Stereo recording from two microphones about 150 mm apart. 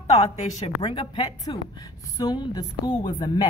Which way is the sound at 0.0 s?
45° left (ahead or behind).